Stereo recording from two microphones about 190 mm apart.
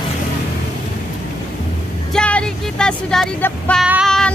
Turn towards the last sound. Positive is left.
turn(degrees=0)  # may be behind; listen again after turning